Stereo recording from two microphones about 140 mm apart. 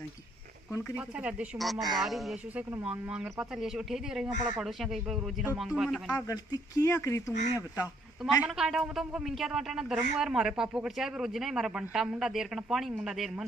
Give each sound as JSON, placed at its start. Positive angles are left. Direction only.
{"t": 0.9, "sound": "speech", "side_deg": -10}
{"t": 6.1, "sound": "speech", "side_deg": 25}
{"t": 8.2, "sound": "speech", "side_deg": 0}